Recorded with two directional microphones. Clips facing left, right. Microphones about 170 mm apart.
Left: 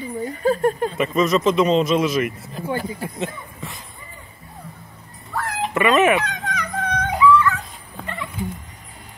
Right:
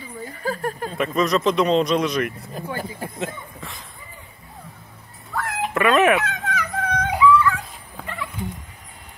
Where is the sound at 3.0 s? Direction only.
Centre (ahead or behind).